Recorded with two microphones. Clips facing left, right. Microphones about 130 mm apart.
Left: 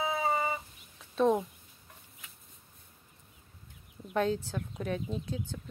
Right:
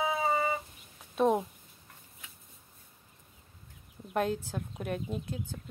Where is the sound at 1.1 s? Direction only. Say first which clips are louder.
Even; 10° right (ahead or behind).